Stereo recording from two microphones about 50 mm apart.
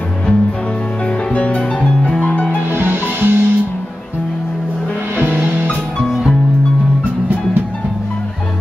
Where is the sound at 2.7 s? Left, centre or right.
Right.